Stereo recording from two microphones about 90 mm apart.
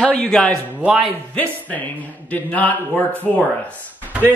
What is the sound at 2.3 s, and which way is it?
Speech, 20° left (ahead or behind).